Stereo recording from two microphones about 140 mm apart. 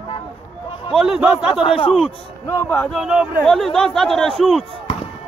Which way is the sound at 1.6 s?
40° left (ahead or behind).